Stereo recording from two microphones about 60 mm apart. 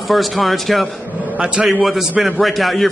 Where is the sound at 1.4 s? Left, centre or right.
Centre.